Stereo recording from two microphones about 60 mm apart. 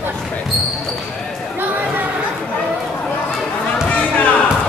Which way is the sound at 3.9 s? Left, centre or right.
Left.